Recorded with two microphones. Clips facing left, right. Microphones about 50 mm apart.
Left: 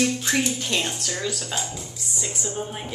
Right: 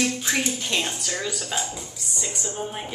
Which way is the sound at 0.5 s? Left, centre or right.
Centre.